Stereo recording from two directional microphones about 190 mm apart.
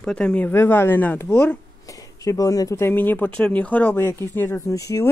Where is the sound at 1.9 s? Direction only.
20° left (ahead or behind).